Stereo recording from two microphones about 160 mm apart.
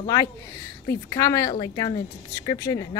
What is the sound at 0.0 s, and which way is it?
A woman's voice, 20° left (ahead or behind).